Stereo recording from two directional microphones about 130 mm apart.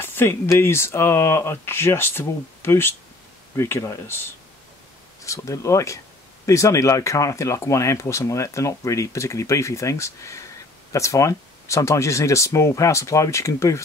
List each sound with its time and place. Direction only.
0.0 s speech: 15° left (ahead or behind)